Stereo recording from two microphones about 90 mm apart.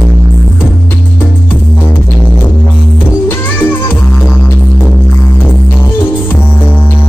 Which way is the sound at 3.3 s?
25° left (ahead or behind).